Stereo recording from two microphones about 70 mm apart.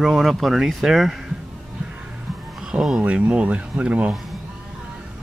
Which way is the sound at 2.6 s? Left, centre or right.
Centre.